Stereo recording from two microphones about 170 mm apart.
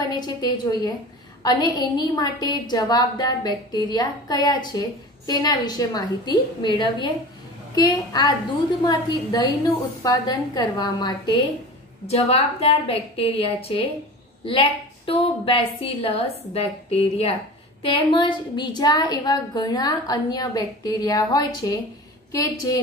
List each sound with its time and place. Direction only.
0.1 s a woman's voice: 25° left (ahead or behind)
12.1 s a woman's voice: 35° left (ahead or behind); by 22.8 s 20° left (ahead or behind)